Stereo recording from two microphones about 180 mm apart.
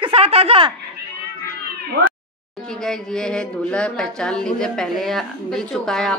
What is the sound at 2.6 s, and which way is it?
A woman's voice, 5° left (ahead or behind).